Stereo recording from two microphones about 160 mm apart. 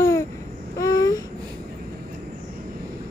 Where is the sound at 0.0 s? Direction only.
20° left (ahead or behind).